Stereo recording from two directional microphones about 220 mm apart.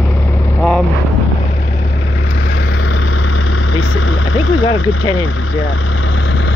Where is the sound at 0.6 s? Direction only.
Centre (ahead or behind).